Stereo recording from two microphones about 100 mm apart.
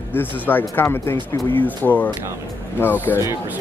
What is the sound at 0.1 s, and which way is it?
Speech, 20° left (ahead or behind).